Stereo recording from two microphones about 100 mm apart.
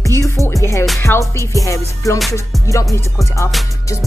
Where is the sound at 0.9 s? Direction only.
25° left (ahead or behind).